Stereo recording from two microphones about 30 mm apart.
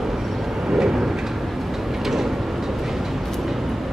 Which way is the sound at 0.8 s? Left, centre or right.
Centre.